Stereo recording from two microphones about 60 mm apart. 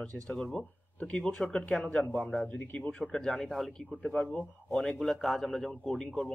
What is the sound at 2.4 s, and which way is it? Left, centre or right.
Speech, left.